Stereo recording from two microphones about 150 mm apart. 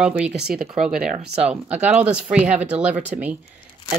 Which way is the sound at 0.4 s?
90° right.